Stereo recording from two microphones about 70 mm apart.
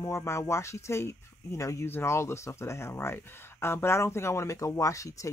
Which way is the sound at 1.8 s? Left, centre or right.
Left.